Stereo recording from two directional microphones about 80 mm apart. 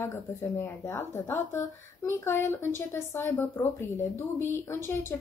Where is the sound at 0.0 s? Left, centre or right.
Left.